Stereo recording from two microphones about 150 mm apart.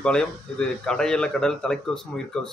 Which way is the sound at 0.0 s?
5° left (ahead or behind).